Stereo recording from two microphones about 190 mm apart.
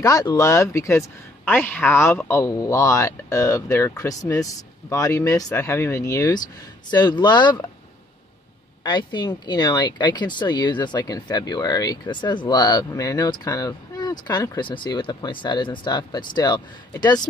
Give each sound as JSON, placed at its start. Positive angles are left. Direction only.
{"t": 0.0, "sound": "a man's voice", "side_deg": 20}
{"t": 8.8, "sound": "speech", "side_deg": 25}